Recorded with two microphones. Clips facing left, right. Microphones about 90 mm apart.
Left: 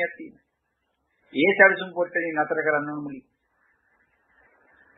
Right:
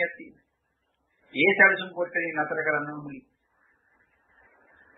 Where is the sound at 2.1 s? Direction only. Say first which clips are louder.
Left 3 dB; 10° left (ahead or behind).